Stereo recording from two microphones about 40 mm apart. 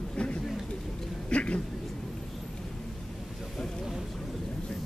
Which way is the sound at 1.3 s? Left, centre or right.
Left.